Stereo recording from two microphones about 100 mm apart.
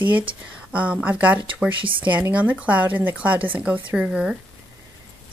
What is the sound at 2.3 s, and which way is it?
Speech, 15° right (ahead or behind).